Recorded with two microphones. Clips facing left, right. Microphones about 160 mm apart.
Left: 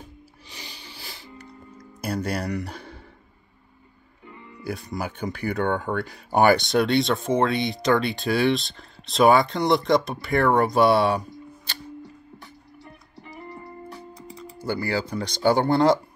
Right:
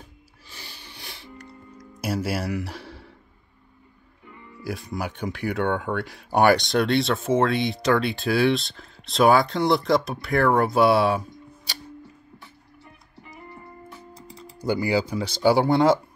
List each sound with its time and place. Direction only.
0.5 s music: 15° left (ahead or behind); by 3.1 s centre (ahead or behind)
4.6 s speech: centre (ahead or behind)
13.5 s music: 35° left (ahead or behind)
14.6 s speech: 15° right (ahead or behind)